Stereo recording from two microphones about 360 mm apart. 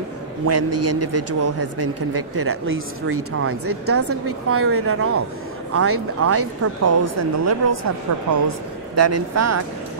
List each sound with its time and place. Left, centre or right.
0.5 s a man's voice: right
8.9 s speech: right